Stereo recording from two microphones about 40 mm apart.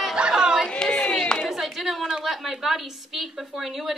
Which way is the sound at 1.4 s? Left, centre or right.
Centre.